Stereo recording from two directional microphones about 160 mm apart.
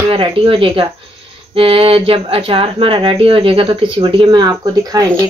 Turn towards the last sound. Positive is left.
turn(degrees=-25)  # may be behind; listen again after turning